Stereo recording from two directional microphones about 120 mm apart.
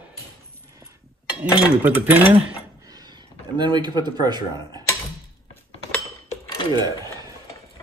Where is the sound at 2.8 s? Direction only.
35° right (ahead or behind).